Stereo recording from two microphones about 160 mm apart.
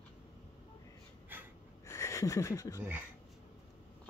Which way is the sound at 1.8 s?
20° left (ahead or behind).